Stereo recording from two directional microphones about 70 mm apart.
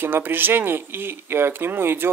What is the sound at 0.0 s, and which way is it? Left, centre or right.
Speech, right.